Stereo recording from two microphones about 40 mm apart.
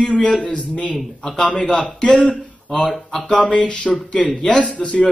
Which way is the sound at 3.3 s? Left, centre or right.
Left.